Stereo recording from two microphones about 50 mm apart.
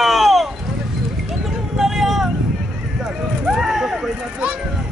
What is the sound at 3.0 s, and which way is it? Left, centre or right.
Clip-clop, centre.